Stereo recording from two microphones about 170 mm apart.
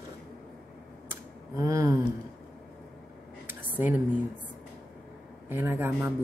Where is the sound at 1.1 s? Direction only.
20° right (ahead or behind).